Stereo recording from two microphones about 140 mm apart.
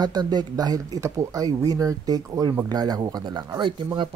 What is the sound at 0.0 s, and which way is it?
Speech, 30° right (ahead or behind).